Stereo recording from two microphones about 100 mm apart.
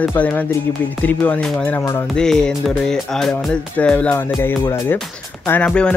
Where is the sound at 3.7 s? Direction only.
15° left (ahead or behind).